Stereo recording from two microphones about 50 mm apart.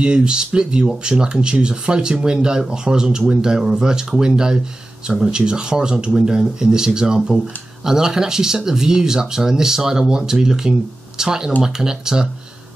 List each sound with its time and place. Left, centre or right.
0.0 s speech: centre